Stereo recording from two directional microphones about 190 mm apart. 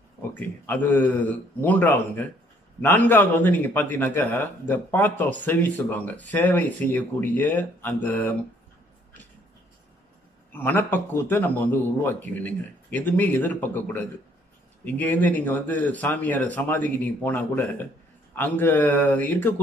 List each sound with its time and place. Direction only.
0.3 s a man's voice: 10° left (ahead or behind)
10.5 s a man's voice: 10° left (ahead or behind)